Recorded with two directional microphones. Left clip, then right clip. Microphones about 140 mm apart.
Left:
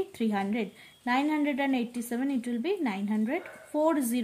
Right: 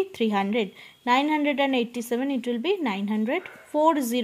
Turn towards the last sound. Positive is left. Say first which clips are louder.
# right 5 dB
turn(degrees=-30)  # may be behind; listen again after turning